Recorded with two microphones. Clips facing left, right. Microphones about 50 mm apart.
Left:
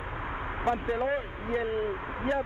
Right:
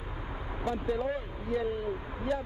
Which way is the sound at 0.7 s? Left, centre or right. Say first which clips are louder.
Left 3 dB; left.